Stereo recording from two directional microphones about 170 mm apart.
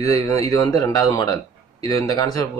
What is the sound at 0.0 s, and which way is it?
Speech, 20° left (ahead or behind).